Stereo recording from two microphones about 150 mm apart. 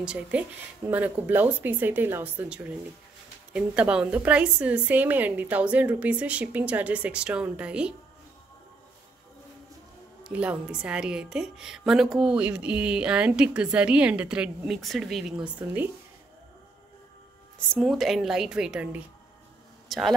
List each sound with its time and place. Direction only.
0.0 s a woman's voice: 5° right (ahead or behind)
10.2 s a woman's voice: 10° right (ahead or behind)
17.7 s a woman's voice: centre (ahead or behind)